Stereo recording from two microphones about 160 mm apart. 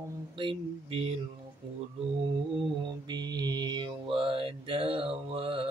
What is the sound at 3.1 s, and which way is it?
Mantra, 25° right (ahead or behind).